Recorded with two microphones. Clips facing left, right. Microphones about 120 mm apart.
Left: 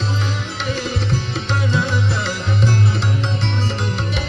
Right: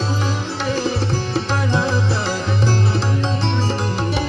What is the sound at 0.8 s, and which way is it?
Music, 30° right (ahead or behind).